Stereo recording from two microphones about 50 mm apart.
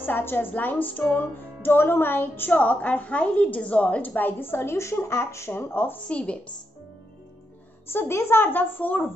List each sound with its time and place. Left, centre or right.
0.0 s speech: left
5.6 s a woman's voice: left
6.0 s a woman's voice: left
7.9 s a woman's voice: left